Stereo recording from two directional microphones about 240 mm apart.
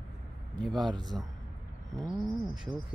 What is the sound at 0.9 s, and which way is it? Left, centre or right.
Speech, centre.